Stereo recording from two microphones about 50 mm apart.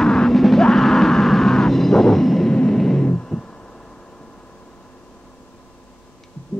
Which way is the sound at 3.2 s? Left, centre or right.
Centre.